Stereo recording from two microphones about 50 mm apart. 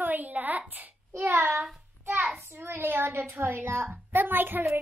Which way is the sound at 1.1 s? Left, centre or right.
Right.